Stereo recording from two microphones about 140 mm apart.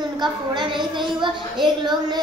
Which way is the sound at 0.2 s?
35° right (ahead or behind).